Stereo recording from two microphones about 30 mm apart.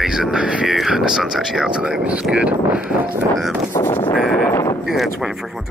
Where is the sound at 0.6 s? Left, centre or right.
Centre.